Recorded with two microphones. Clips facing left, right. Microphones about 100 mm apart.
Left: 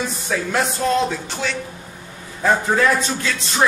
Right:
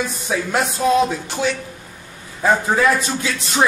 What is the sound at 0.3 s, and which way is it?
Speech, 15° right (ahead or behind).